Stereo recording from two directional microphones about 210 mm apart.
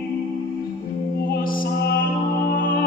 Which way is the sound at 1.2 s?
45° left (ahead or behind).